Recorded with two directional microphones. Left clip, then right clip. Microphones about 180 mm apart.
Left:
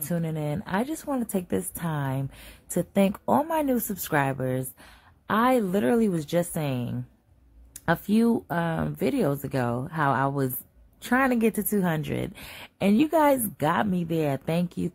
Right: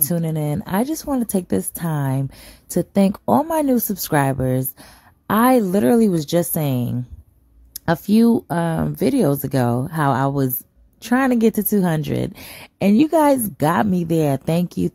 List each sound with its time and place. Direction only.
0.0 s speech: 40° right (ahead or behind)